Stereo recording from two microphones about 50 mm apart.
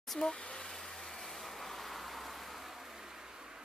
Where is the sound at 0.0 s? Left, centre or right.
Centre.